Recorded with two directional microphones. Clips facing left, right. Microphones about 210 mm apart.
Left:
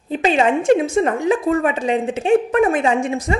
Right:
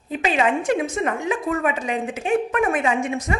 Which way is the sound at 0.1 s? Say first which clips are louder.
Left 4 dB; 30° left (ahead or behind).